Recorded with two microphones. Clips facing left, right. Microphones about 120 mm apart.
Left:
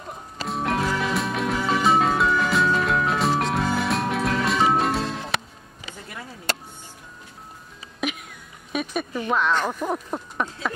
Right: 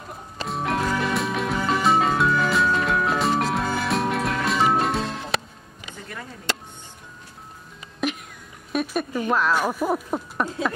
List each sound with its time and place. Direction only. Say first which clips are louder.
0.5 s music: even; centre (ahead or behind)
8.0 s a sound: right 2 dB; centre (ahead or behind)
8.7 s speech: right 2 dB; 5° right (ahead or behind)